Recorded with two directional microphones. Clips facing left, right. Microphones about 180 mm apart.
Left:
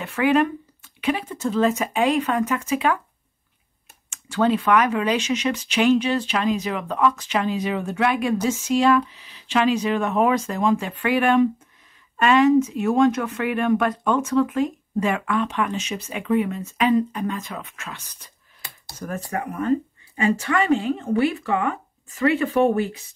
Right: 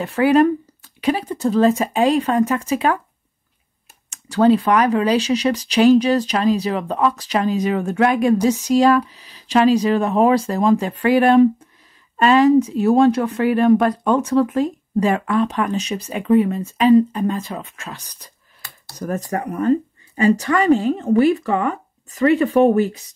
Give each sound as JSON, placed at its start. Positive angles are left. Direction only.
{"t": 0.0, "sound": "speech", "side_deg": -35}
{"t": 4.1, "sound": "speech", "side_deg": -35}